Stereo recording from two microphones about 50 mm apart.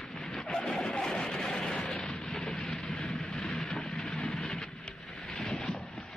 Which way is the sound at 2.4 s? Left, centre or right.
Centre.